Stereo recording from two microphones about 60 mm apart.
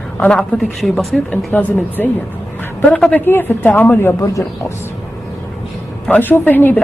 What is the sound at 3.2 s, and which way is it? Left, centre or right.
Speech, left.